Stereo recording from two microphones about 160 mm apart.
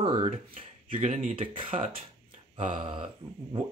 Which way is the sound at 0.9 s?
50° right (ahead or behind).